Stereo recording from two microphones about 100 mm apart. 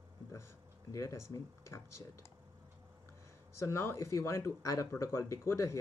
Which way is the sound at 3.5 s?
30° left (ahead or behind).